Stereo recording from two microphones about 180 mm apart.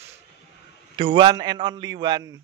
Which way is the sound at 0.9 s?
25° right (ahead or behind).